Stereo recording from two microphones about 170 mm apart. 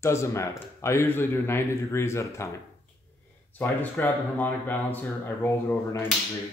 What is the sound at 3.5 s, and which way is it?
Speech, 10° left (ahead or behind).